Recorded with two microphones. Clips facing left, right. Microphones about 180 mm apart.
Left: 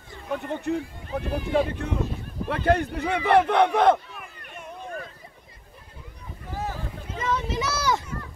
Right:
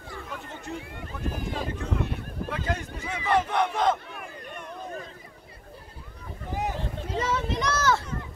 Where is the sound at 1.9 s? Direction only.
65° right (ahead or behind).